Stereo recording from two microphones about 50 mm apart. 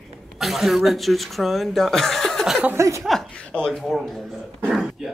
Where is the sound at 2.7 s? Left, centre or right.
Right.